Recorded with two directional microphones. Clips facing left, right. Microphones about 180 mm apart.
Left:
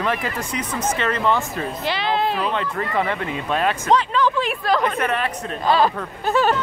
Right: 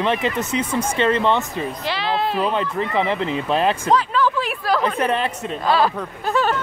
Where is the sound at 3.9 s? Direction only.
5° right (ahead or behind).